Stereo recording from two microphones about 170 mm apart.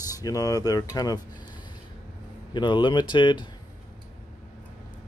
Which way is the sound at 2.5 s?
25° left (ahead or behind).